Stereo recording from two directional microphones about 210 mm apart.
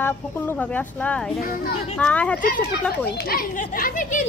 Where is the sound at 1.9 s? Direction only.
5° left (ahead or behind).